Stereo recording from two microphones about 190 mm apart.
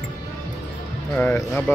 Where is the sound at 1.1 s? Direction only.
10° left (ahead or behind).